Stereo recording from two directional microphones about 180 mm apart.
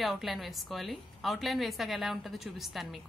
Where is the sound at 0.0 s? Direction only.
Centre (ahead or behind).